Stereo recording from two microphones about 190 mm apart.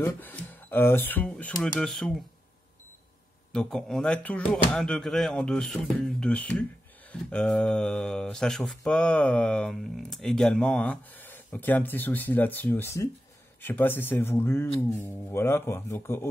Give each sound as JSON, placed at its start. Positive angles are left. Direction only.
{"t": 0.0, "sound": "speech", "side_deg": 10}
{"t": 3.5, "sound": "speech", "side_deg": 0}